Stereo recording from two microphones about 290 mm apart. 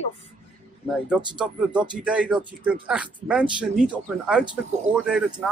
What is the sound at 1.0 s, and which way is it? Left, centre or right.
Speech, centre.